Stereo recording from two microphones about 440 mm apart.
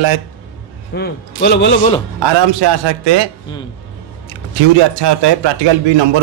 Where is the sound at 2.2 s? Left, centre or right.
Right.